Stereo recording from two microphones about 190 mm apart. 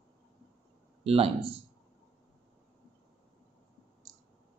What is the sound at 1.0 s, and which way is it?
Speech, 30° right (ahead or behind).